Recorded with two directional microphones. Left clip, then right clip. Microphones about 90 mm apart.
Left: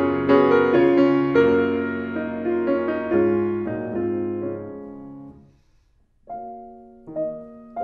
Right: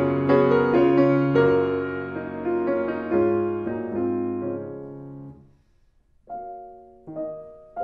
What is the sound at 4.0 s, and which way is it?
Music, 15° left (ahead or behind).